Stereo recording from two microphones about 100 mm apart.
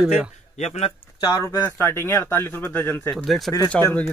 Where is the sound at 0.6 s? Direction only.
90° left.